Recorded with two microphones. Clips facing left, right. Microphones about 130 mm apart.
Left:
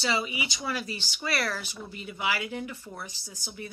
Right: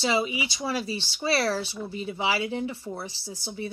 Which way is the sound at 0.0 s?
25° right (ahead or behind).